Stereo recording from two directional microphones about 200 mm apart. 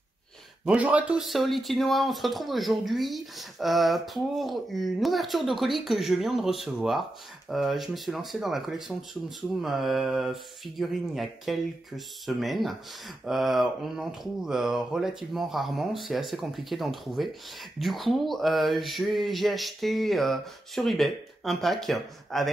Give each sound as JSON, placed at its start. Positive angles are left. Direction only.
{"t": 0.7, "sound": "speech", "side_deg": -5}